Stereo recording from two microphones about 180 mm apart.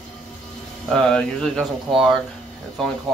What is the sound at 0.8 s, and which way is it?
Speech, 5° left (ahead or behind).